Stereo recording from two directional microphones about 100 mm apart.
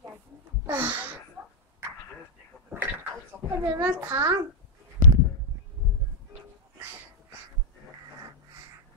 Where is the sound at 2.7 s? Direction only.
20° right (ahead or behind).